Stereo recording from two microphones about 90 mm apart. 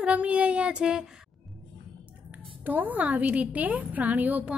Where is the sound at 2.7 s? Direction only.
20° right (ahead or behind).